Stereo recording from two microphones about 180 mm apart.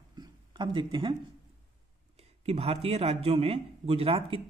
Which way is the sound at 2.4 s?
35° right (ahead or behind).